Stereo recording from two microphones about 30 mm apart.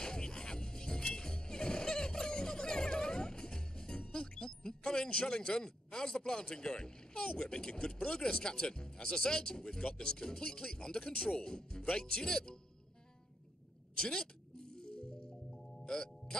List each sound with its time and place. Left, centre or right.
0.0 s music: left
6.5 s speech: left
13.9 s a sound: left
15.5 s music: left